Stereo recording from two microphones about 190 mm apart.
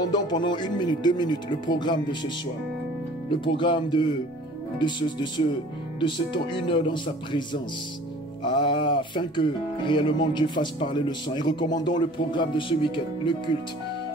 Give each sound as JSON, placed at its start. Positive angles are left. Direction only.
{"t": 0.1, "sound": "speech", "side_deg": 25}
{"t": 8.5, "sound": "speech", "side_deg": 25}